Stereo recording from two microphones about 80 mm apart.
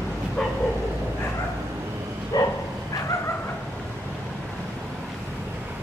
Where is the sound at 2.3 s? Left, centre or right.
Left.